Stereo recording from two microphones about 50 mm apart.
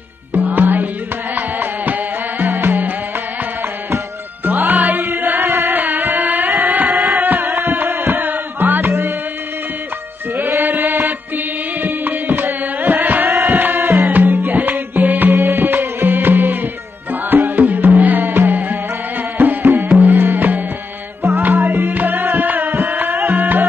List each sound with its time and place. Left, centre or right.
0.3 s music: right
4.5 s music: right
6.6 s a sound: right
7.2 s music: right
10.3 s music: right
21.2 s music: right
21.5 s music: right